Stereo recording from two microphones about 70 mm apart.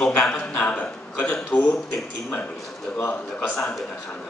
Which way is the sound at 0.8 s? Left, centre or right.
Centre.